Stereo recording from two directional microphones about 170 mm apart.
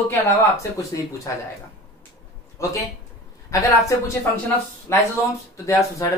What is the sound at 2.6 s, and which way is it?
Speech, 20° left (ahead or behind).